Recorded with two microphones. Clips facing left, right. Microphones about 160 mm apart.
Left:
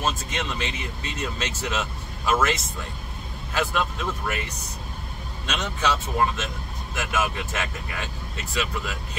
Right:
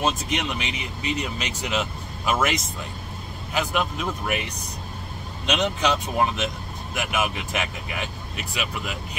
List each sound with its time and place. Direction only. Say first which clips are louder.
0.0 s speech: right 3 dB; 15° right (ahead or behind)
3.5 s speech: right 1 dB; 15° right (ahead or behind)
5.5 s speech: right 3 dB; 15° right (ahead or behind)